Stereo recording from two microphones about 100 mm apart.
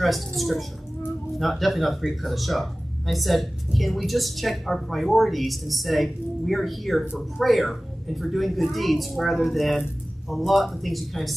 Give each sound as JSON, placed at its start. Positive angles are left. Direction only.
{"t": 0.4, "sound": "speech", "side_deg": 0}